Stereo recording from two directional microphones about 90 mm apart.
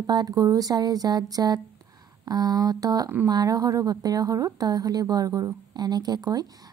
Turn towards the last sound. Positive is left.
turn(degrees=-45)  # may be behind; listen again after turning